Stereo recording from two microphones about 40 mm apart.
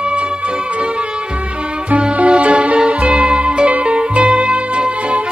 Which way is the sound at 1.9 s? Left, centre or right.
Right.